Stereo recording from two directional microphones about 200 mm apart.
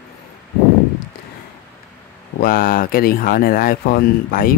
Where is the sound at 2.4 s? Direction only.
45° left (ahead or behind).